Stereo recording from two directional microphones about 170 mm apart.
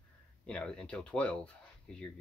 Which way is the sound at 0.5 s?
5° left (ahead or behind).